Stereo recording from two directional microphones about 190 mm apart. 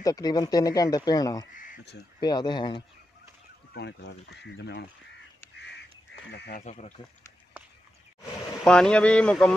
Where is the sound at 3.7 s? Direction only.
65° left (ahead or behind).